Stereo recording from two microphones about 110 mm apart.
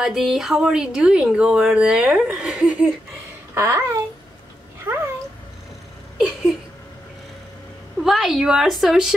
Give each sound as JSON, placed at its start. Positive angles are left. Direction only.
{"t": 0.0, "sound": "speech", "side_deg": -5}
{"t": 3.5, "sound": "a child's voice", "side_deg": -25}
{"t": 4.8, "sound": "cat", "side_deg": -20}
{"t": 6.1, "sound": "a sound", "side_deg": -5}
{"t": 8.0, "sound": "speech", "side_deg": 0}